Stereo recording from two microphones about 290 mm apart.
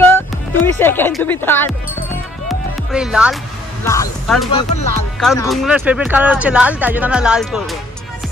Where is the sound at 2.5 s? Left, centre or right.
Centre.